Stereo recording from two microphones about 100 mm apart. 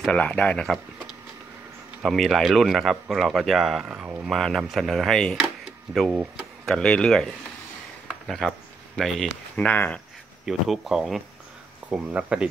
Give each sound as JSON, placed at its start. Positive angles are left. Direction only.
{"t": 0.1, "sound": "speech", "side_deg": 15}
{"t": 2.0, "sound": "speech", "side_deg": 0}
{"t": 3.8, "sound": "speech", "side_deg": -15}
{"t": 4.3, "sound": "speech", "side_deg": 0}
{"t": 6.0, "sound": "speech", "side_deg": -10}
{"t": 6.6, "sound": "speech", "side_deg": 10}
{"t": 8.3, "sound": "speech", "side_deg": 5}
{"t": 9.6, "sound": "speech", "side_deg": 15}
{"t": 10.4, "sound": "speech", "side_deg": -5}